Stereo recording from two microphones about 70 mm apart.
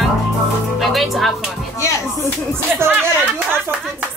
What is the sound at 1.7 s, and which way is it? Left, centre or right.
Speech, left.